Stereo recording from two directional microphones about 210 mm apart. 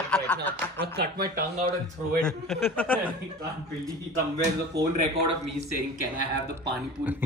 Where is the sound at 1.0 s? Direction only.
45° right (ahead or behind).